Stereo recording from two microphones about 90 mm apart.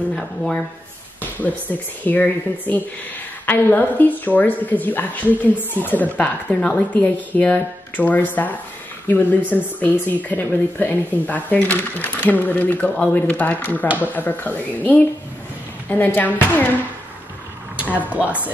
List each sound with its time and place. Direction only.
0.1 s speech: 5° left (ahead or behind)
1.2 s a woman's voice: 20° left (ahead or behind)
17.7 s speech: 15° right (ahead or behind)